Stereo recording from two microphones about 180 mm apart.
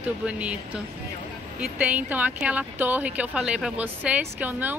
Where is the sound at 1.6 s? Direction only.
10° right (ahead or behind).